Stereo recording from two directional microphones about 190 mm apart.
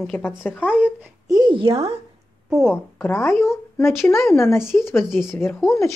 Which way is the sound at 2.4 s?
Centre (ahead or behind).